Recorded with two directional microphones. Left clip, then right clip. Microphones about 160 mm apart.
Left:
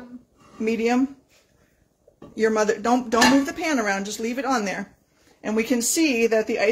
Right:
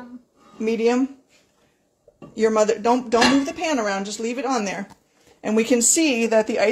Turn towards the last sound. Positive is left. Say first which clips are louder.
# right 2 dB
turn(degrees=-5)  # may be behind; listen again after turning